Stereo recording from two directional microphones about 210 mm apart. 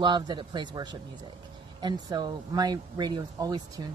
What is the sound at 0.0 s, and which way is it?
Speech, 20° right (ahead or behind).